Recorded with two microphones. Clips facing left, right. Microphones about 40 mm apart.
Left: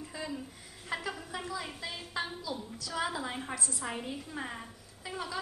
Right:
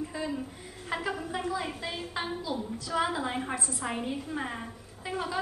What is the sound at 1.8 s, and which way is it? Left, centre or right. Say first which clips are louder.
A woman's voice: right 3 dB; right.